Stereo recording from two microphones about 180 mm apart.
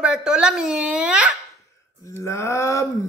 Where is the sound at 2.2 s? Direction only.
15° left (ahead or behind).